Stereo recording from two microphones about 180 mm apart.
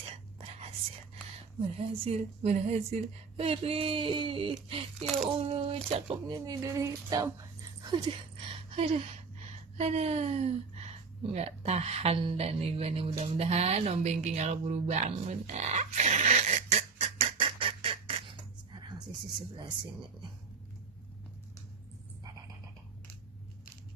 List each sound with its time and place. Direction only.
0.4 s whispering: 35° right (ahead or behind)
1.8 s speech: 35° right (ahead or behind)
4.9 s speech: centre (ahead or behind)
5.4 s speech: 30° right (ahead or behind)
7.8 s a sound: 25° right (ahead or behind)